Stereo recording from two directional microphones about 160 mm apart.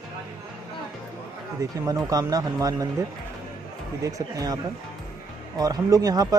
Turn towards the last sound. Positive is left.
turn(degrees=-20)  # may be behind; listen again after turning